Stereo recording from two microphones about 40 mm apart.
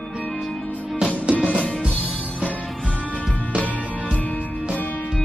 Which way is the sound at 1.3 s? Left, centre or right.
Left.